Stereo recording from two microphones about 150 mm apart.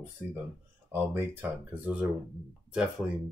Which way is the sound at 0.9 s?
15° right (ahead or behind).